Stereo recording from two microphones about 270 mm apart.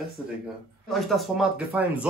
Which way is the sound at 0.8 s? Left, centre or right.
Centre.